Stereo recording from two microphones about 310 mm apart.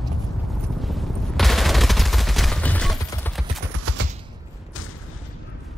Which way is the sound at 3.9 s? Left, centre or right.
Right.